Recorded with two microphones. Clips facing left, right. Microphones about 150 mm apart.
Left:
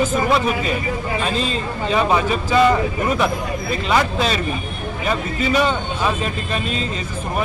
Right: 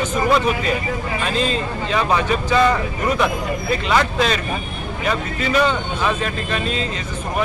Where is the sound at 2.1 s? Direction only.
5° left (ahead or behind).